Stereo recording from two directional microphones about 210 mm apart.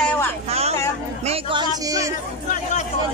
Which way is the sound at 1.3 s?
25° right (ahead or behind).